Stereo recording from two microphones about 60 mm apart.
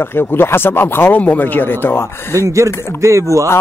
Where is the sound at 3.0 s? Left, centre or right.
Right.